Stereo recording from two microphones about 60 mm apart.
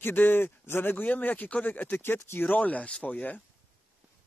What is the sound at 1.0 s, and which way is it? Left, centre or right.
Speech, left.